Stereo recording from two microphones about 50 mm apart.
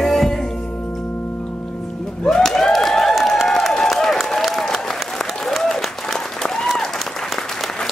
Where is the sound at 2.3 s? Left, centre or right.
Centre.